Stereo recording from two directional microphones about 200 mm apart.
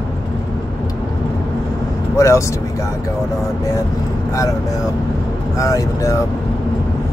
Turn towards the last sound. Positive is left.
turn(degrees=15)  # may be behind; listen again after turning